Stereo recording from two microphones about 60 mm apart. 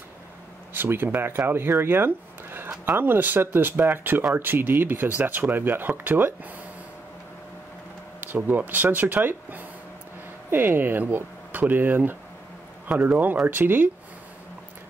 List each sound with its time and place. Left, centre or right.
0.7 s speech: right
8.2 s speech: right